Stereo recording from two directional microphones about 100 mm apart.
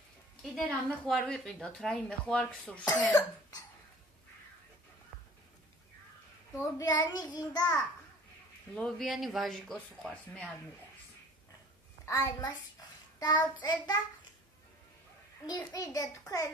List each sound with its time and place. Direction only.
0.4 s a woman's voice: 5° left (ahead or behind)
6.5 s a child's voice: 25° left (ahead or behind)
6.9 s a child's voice: 45° left (ahead or behind)
8.7 s speech: 5° left (ahead or behind)
12.1 s a child's voice: 35° left (ahead or behind)
13.2 s child singing: 45° left (ahead or behind)
15.4 s a child's voice: 40° left (ahead or behind)